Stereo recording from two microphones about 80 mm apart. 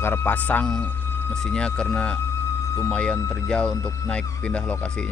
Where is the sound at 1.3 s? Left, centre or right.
Centre.